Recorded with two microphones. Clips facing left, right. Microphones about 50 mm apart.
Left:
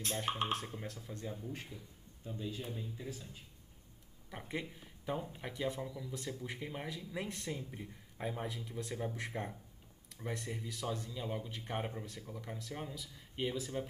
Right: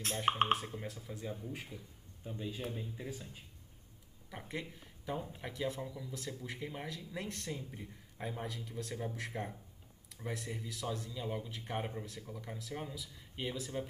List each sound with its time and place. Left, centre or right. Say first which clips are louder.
0.1 s a man's voice: right 5 dB; right
1.0 s speech: right 1 dB; centre
2.2 s a man's voice: right 1 dB; centre
4.3 s speech: left 1 dB; centre